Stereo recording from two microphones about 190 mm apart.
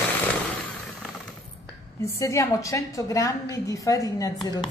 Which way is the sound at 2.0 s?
15° left (ahead or behind).